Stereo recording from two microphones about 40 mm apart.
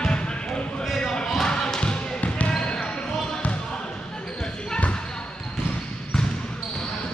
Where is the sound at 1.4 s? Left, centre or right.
Centre.